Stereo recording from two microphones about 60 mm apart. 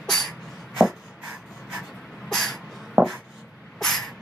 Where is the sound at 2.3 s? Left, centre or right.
Centre.